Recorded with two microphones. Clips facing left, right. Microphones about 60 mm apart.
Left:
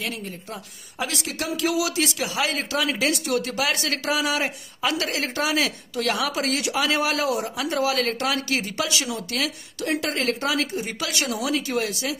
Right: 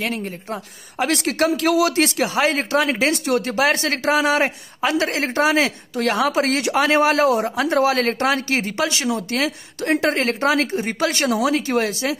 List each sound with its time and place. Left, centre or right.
0.0 s a woman's voice: right